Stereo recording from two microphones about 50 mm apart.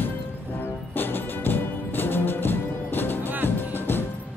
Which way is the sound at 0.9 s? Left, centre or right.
Left.